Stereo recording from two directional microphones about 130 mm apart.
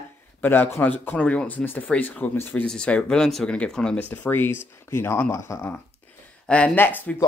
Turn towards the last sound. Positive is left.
turn(degrees=15)  # may be behind; listen again after turning